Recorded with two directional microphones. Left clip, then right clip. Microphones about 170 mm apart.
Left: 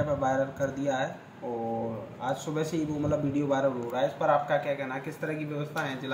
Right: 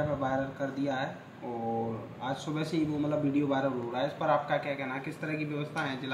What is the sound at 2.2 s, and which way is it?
A man's voice, 40° left (ahead or behind).